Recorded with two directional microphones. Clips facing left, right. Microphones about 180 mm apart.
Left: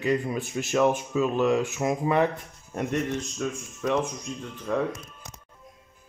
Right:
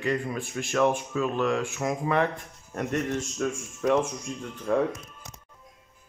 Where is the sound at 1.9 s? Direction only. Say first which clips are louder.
Left 2 dB; 5° left (ahead or behind).